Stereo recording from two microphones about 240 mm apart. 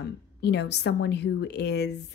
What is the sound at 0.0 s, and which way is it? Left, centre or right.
A woman's voice, left.